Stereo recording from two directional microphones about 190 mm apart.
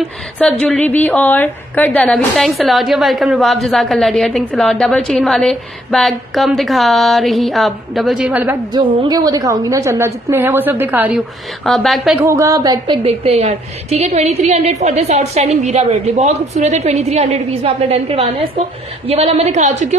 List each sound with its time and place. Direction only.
0.4 s a woman's voice: 5° left (ahead or behind)
8.7 s a woman's voice: 20° right (ahead or behind); by 12.1 s centre (ahead or behind)
12.2 s a woman's voice: 15° right (ahead or behind); by 20.0 s 40° right (ahead or behind)